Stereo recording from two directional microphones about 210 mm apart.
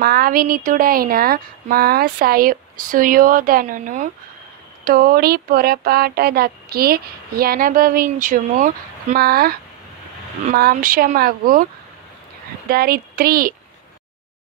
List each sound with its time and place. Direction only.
0.0 s speech: 45° right (ahead or behind)
12.6 s speech: 45° right (ahead or behind)